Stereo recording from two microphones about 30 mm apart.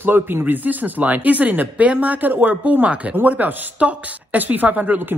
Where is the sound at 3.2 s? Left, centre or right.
Right.